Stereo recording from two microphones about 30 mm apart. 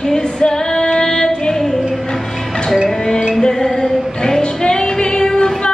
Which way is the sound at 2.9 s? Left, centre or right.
Left.